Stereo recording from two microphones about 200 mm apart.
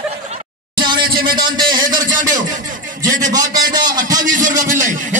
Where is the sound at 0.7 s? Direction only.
25° right (ahead or behind).